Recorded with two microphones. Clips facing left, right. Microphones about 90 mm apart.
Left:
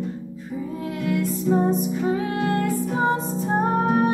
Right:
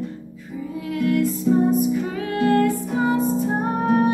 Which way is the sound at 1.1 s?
30° left (ahead or behind).